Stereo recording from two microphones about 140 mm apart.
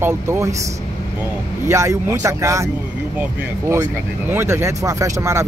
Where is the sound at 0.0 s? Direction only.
20° right (ahead or behind).